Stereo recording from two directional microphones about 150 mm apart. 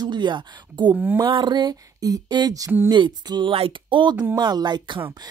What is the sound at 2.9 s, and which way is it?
Speech, 30° right (ahead or behind).